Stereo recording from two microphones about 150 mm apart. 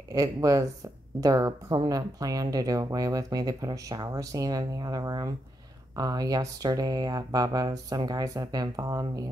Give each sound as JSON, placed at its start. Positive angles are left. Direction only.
{"t": 0.1, "sound": "speech", "side_deg": -25}